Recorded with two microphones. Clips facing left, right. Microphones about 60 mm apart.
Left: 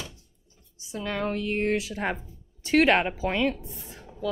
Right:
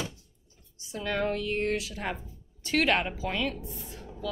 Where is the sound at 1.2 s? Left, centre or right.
Centre.